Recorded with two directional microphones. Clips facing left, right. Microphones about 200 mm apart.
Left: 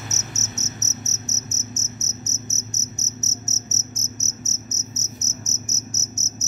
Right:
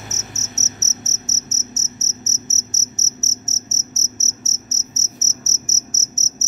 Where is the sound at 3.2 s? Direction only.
25° right (ahead or behind).